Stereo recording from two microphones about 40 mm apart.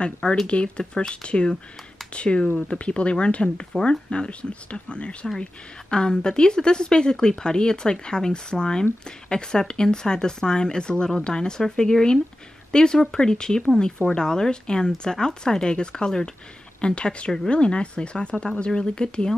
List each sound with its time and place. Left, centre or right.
0.0 s a woman's voice: left